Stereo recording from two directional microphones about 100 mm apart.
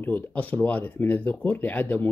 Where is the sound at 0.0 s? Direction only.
15° left (ahead or behind).